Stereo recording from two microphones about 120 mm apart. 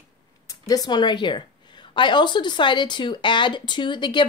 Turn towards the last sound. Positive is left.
turn(degrees=40)  # may be behind; listen again after turning